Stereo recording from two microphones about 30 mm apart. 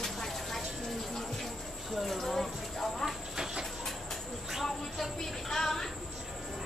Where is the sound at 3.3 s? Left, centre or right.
Right.